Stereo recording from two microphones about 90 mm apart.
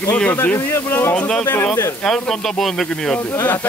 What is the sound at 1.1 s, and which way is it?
Speech, 15° left (ahead or behind).